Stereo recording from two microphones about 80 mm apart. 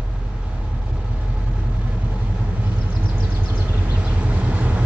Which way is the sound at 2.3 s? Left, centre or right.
Right.